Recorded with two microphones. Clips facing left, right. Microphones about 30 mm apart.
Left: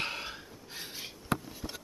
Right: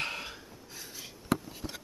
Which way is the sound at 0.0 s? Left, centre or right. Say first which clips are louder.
Even; centre.